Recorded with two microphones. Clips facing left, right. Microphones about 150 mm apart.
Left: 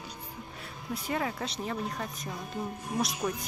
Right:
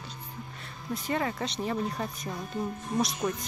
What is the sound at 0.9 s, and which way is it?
A woman's voice, 5° left (ahead or behind).